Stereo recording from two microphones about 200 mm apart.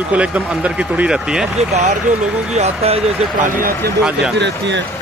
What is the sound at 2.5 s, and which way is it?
Speech, 30° right (ahead or behind).